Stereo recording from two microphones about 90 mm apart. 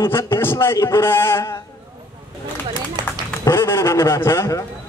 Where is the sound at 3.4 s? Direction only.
30° left (ahead or behind).